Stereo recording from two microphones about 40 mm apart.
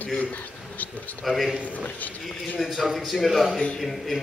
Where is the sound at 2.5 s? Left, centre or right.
Centre.